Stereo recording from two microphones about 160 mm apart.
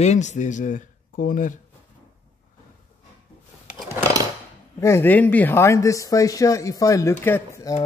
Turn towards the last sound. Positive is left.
turn(degrees=20)  # may be behind; listen again after turning